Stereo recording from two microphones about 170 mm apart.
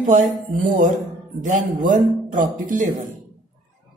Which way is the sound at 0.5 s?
45° right (ahead or behind).